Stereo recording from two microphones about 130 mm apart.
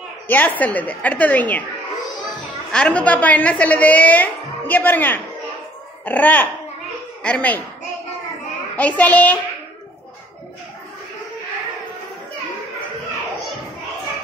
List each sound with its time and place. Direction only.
0.3 s a woman's voice: 10° left (ahead or behind)
2.7 s a woman's voice: 10° left (ahead or behind)
8.7 s a woman's voice: 10° left (ahead or behind)